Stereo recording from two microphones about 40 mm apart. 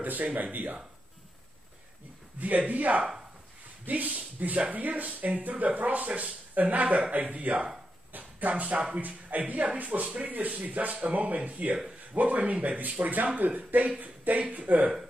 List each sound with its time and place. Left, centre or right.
0.0 s speech: right
2.3 s speech: right